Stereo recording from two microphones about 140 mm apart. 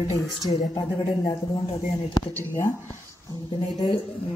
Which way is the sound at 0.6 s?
30° left (ahead or behind).